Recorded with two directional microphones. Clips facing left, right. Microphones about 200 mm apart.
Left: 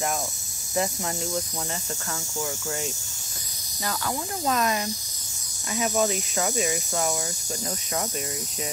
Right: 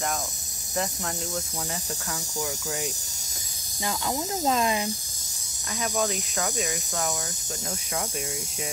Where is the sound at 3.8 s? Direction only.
20° right (ahead or behind).